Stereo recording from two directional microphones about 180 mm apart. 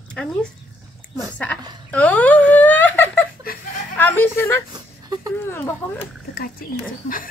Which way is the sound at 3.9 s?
10° left (ahead or behind).